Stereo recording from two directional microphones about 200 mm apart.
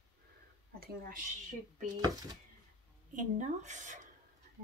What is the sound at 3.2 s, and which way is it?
Speech, 35° right (ahead or behind).